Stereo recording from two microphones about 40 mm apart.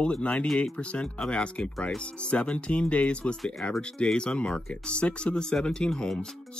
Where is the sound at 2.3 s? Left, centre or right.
Left; by 6.1 s centre.